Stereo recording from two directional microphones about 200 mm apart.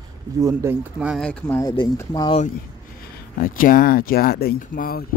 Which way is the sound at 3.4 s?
45° left (ahead or behind).